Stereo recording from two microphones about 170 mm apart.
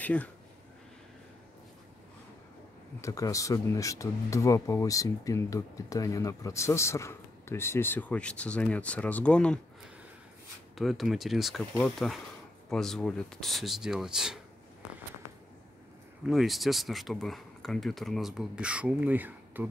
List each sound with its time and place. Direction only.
0.0 s speech: 10° left (ahead or behind)
3.0 s speech: 20° left (ahead or behind)
10.8 s speech: centre (ahead or behind)
16.3 s speech: centre (ahead or behind)